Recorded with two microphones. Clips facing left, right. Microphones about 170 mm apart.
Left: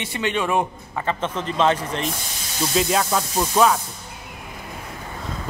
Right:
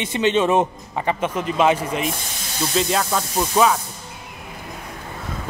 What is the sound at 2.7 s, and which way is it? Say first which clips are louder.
Speech: even; centre (ahead or behind).